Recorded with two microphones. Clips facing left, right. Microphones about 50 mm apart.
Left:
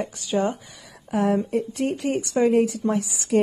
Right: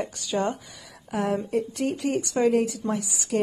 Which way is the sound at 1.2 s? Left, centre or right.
Left.